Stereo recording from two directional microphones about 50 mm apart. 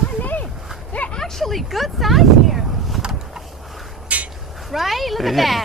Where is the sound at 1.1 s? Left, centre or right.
Centre.